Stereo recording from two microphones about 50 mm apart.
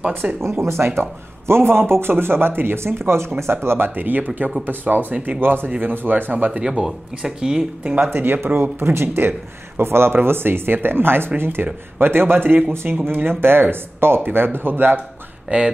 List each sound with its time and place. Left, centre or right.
0.4 s speech: right
3.9 s speech: right
5.1 s speech: right
5.4 s speech: right
6.7 s speech: centre
8.0 s speech: right
15.5 s speech: right